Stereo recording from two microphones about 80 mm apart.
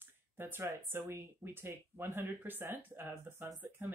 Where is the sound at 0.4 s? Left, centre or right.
Right.